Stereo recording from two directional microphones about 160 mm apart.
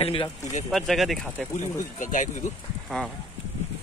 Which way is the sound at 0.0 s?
35° left (ahead or behind).